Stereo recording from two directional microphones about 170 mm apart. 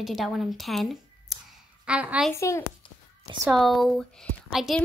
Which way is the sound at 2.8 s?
30° left (ahead or behind).